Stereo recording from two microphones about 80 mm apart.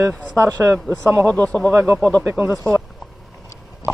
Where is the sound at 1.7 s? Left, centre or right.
Right.